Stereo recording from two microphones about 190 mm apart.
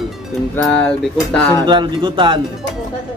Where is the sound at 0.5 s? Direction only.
5° left (ahead or behind).